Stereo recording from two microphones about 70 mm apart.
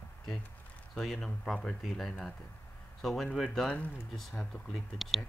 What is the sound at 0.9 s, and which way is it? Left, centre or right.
Speech, centre.